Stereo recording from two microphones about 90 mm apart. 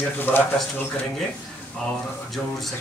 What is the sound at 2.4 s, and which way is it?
Speech, 5° left (ahead or behind).